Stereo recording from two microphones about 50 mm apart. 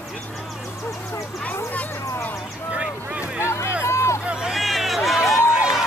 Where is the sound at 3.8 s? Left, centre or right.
Left.